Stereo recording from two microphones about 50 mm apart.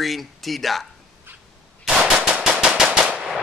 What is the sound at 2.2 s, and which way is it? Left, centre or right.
Machine gun, centre.